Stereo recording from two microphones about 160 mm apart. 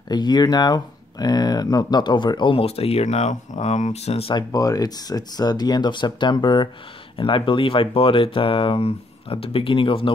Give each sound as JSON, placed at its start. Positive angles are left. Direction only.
{"t": 0.1, "sound": "speech", "side_deg": 25}